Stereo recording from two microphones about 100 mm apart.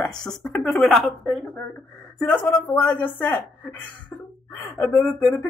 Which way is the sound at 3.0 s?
20° left (ahead or behind).